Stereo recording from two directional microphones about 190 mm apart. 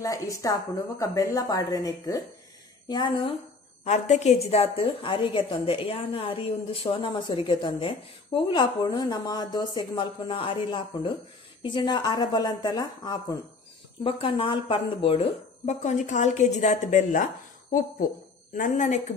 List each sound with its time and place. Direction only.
0.0 s a woman's voice: 20° left (ahead or behind); by 17.3 s 45° left (ahead or behind)
18.5 s a woman's voice: 40° left (ahead or behind)